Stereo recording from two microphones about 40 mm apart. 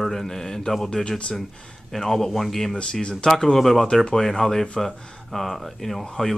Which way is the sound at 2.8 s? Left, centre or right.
Left.